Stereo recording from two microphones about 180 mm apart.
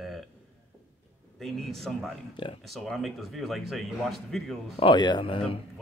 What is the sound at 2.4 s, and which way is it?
Speech, 25° left (ahead or behind).